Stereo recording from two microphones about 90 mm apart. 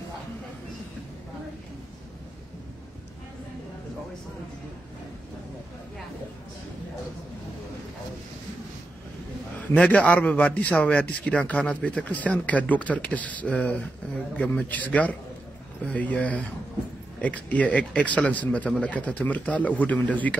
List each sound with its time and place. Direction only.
9.8 s a man's voice: 15° left (ahead or behind)